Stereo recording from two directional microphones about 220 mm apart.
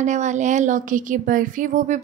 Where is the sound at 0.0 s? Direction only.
35° right (ahead or behind).